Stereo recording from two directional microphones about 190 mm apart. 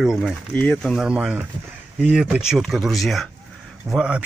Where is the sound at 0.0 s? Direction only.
Centre (ahead or behind).